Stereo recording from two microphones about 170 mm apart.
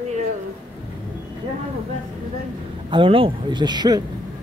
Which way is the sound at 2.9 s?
30° right (ahead or behind).